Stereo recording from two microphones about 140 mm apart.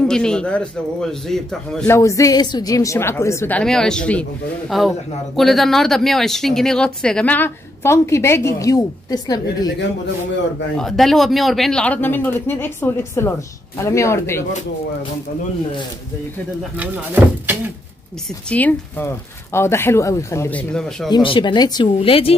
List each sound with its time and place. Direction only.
0.0 s a man's voice: 5° left (ahead or behind)
1.9 s a woman's voice: 20° left (ahead or behind)
10.8 s a woman's voice: centre (ahead or behind); by 14.4 s 20° left (ahead or behind)
16.7 s speech: 10° right (ahead or behind)
18.5 s a woman's voice: 10° left (ahead or behind)
21.1 s speech: 35° left (ahead or behind)
22.0 s speech: 40° left (ahead or behind)